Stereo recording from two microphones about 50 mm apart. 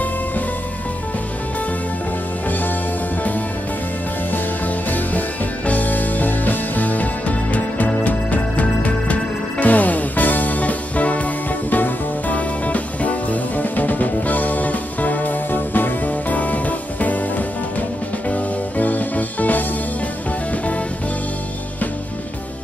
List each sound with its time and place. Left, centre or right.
4.8 s music: left